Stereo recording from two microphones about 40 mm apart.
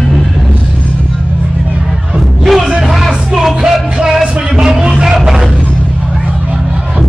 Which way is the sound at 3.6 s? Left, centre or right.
Centre.